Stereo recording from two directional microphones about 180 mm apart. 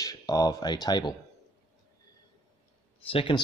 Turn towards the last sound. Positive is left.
turn(degrees=30)  # may be behind; listen again after turning